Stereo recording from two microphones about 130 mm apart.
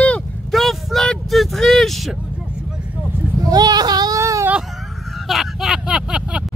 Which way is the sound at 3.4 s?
30° right (ahead or behind).